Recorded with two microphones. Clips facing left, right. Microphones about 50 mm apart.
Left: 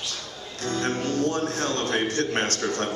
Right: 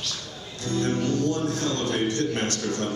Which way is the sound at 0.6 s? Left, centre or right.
Left.